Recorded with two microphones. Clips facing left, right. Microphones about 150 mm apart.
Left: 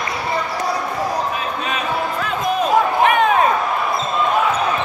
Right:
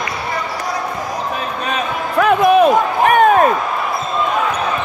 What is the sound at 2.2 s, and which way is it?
Basketball bounce, 65° right (ahead or behind).